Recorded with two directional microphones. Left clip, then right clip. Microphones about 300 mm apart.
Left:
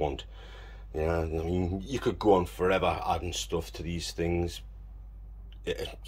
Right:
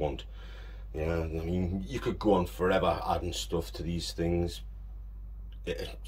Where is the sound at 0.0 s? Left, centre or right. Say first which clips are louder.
Left 2 dB; centre.